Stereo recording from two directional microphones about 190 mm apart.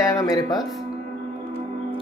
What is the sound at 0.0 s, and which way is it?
Music, 20° left (ahead or behind).